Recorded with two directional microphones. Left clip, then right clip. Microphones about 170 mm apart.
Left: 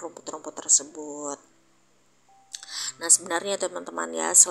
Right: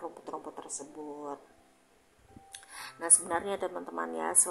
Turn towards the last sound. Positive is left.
turn(degrees=20)  # may be behind; listen again after turning